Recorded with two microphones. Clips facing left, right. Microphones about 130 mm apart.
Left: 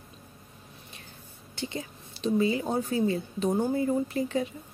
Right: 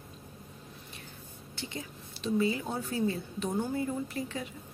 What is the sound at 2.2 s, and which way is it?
Speech, 20° left (ahead or behind).